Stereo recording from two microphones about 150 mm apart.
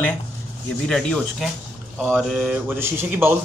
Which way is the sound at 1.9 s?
10° right (ahead or behind).